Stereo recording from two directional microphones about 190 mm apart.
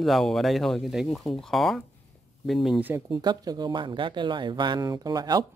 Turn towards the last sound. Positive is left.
turn(degrees=-20)  # may be behind; listen again after turning